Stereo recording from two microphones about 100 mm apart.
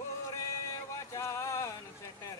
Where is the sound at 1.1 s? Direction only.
30° left (ahead or behind).